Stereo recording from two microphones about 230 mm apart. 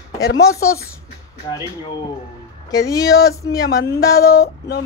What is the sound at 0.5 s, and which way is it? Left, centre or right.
Speech, centre.